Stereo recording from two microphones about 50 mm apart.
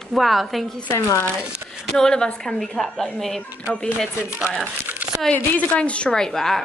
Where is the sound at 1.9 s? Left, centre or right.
Centre.